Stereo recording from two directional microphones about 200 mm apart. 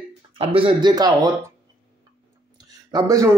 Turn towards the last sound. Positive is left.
turn(degrees=-15)  # may be behind; listen again after turning